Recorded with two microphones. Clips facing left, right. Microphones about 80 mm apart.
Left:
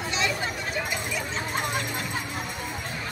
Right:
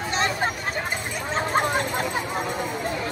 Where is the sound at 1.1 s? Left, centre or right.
Right.